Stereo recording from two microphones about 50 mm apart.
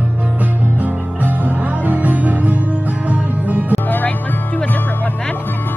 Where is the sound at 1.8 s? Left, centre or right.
Right.